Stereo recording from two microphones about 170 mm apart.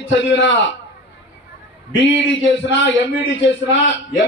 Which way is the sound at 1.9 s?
90° left.